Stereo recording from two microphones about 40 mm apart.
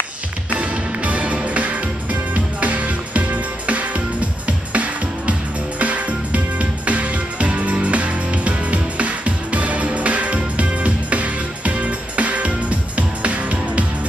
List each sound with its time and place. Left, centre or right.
0.6 s music: right